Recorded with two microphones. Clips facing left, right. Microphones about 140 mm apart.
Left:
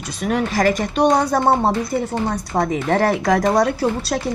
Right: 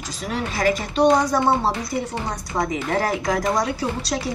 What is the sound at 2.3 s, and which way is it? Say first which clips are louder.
Speech: left 4 dB; 65° left (ahead or behind).